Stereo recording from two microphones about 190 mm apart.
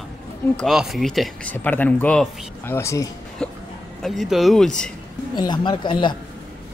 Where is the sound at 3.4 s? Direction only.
5° left (ahead or behind).